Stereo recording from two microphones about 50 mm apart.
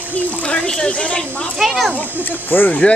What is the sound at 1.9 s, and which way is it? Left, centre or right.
Speech, left.